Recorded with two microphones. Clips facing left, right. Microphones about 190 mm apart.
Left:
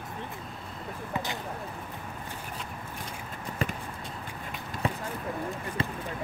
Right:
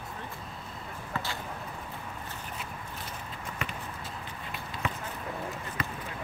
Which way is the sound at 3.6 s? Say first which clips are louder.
Left 7 dB; 35° left (ahead or behind).